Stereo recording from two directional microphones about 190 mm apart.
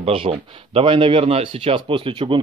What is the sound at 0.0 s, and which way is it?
Speech, 30° right (ahead or behind).